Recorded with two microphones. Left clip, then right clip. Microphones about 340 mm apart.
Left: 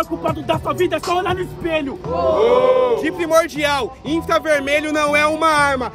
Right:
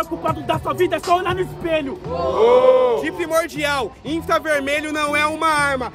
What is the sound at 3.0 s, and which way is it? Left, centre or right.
Music, centre.